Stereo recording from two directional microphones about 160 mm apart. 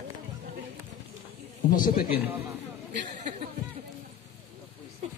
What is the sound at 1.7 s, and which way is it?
Speech, 60° left (ahead or behind).